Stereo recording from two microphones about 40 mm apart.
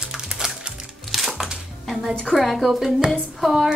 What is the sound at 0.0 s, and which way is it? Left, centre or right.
Music, centre.